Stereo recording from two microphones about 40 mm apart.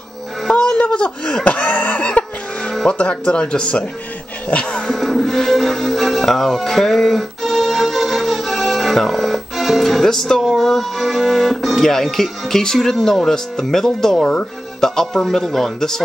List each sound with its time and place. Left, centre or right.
0.5 s laughter: left
2.9 s speech: left
4.9 s music: centre
6.2 s organ: centre
10.4 s speech: centre